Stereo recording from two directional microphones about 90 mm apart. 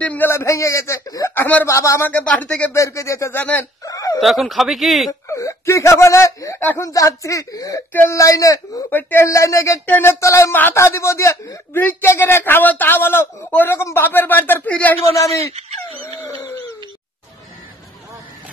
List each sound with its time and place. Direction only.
0.0 s a man's voice: 20° left (ahead or behind); by 1.3 s 45° left (ahead or behind)
1.3 s speech: 20° left (ahead or behind)
1.7 s a man's voice: 35° left (ahead or behind)
2.0 s speech: 20° left (ahead or behind)
2.7 s a man's voice: 35° left (ahead or behind)
3.8 s a sound: 40° left (ahead or behind)
4.2 s speech: centre (ahead or behind)
5.3 s a man's voice: 35° left (ahead or behind)
8.9 s a man's voice: 30° left (ahead or behind)
9.8 s speech: 20° left (ahead or behind)
10.2 s a man's voice: 35° left (ahead or behind); by 15.0 s 15° left (ahead or behind)